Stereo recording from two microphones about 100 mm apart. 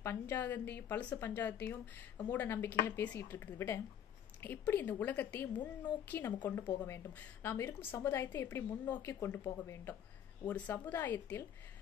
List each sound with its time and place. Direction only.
0.0 s a woman's voice: 25° left (ahead or behind)
10.4 s a woman's voice: 15° left (ahead or behind)